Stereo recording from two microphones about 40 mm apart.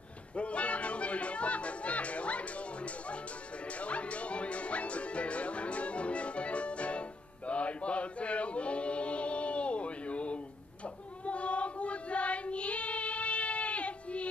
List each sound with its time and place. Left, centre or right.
0.4 s music: left
11.2 s child singing: left